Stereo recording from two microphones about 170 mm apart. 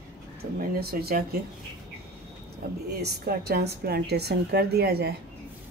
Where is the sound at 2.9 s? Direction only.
70° right (ahead or behind).